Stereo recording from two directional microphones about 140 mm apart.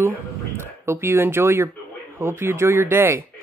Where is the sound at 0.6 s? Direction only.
20° right (ahead or behind).